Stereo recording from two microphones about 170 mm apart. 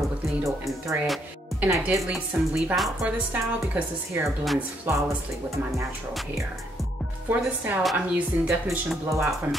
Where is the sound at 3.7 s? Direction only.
15° right (ahead or behind).